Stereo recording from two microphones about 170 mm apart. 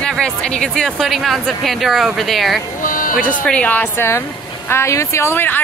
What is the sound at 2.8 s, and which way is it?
Music, 55° left (ahead or behind).